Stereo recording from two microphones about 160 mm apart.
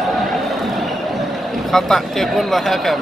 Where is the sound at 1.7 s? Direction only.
Centre (ahead or behind).